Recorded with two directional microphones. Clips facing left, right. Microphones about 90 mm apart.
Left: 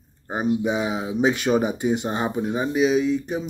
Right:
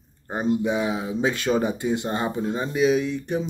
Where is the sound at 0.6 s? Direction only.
15° left (ahead or behind).